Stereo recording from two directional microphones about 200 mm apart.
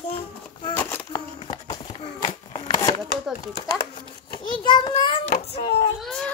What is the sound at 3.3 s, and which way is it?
Speech, centre (ahead or behind).